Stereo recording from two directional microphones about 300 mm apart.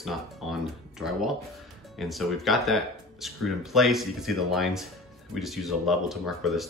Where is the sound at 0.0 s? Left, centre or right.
Centre.